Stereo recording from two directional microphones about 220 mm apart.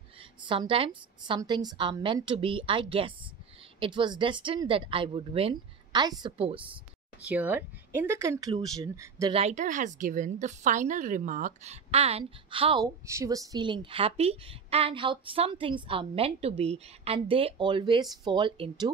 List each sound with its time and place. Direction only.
0.5 s a woman's voice: 25° right (ahead or behind)
7.2 s speech: 5° right (ahead or behind)
9.3 s a woman's voice: 30° right (ahead or behind)
13.0 s a woman's voice: 15° right (ahead or behind)